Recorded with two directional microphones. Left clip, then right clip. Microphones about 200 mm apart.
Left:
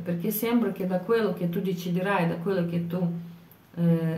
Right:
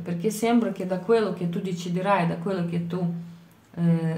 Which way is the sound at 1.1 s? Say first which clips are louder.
Right 4 dB; 30° right (ahead or behind).